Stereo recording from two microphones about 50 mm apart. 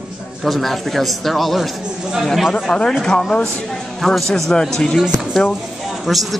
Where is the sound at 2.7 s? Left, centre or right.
Centre.